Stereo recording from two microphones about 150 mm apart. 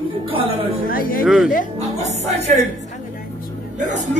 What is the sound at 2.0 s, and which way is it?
Speech, 50° right (ahead or behind).